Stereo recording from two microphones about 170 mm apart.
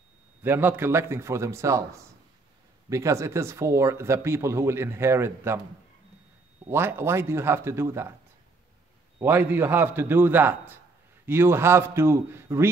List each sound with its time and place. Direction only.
0.4 s speech: 10° right (ahead or behind)
6.7 s speech: 15° right (ahead or behind)
9.2 s speech: 10° right (ahead or behind)